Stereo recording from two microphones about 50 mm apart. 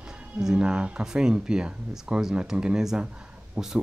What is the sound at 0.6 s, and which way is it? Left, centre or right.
Speech, centre.